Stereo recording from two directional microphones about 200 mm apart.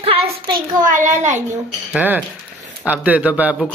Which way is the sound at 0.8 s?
40° right (ahead or behind).